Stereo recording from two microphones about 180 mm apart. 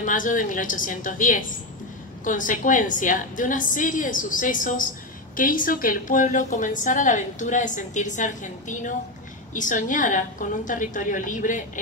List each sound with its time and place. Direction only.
0.0 s a woman's voice: 45° left (ahead or behind)